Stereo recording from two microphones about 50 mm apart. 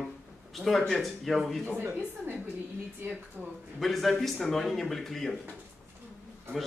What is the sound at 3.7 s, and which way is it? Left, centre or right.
A man's voice, centre.